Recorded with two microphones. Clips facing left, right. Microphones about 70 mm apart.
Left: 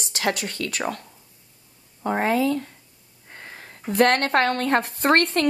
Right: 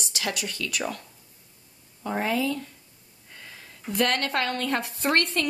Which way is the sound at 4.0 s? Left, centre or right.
Left.